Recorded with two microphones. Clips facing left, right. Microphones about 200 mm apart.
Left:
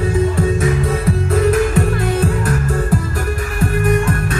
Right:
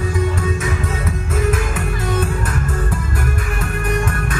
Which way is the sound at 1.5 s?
35° left (ahead or behind).